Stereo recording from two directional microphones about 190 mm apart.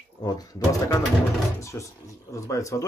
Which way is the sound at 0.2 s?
20° left (ahead or behind).